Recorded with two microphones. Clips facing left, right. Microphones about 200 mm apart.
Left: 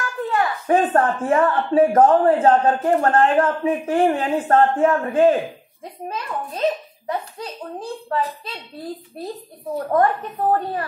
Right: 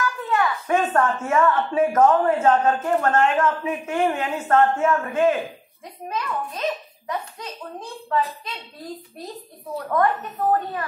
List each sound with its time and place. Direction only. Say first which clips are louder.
0.0 s a sound: left 1 dB; 30° left (ahead or behind)
0.9 s speech: left 3 dB; 30° left (ahead or behind)
9.8 s a woman's voice: left 3 dB; 30° left (ahead or behind)